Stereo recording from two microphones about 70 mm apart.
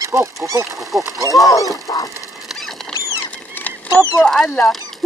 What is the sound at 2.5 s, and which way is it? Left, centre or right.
Rodents, centre.